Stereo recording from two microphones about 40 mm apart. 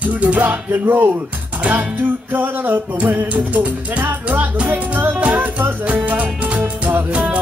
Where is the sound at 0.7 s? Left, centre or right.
Right.